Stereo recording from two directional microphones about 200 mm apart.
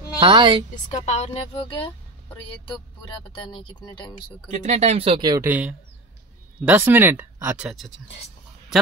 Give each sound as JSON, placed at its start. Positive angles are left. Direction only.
{"t": 0.2, "sound": "speech", "side_deg": -25}
{"t": 0.8, "sound": "a woman's voice", "side_deg": 35}
{"t": 3.4, "sound": "speech", "side_deg": 25}
{"t": 4.5, "sound": "speech", "side_deg": -35}
{"t": 5.5, "sound": "speech", "side_deg": -5}